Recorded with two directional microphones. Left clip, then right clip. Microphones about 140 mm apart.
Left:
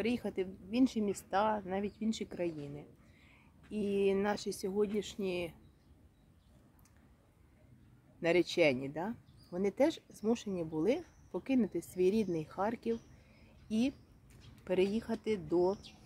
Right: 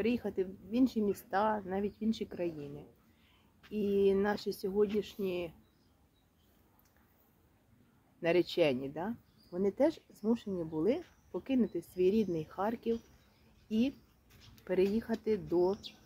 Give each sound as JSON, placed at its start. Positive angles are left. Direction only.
{"t": 0.0, "sound": "a woman's voice", "side_deg": 25}
{"t": 3.7, "sound": "a woman's voice", "side_deg": 25}
{"t": 8.2, "sound": "a woman's voice", "side_deg": 30}